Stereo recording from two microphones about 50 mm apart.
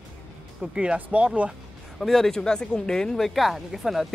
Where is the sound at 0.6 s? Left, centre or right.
Right.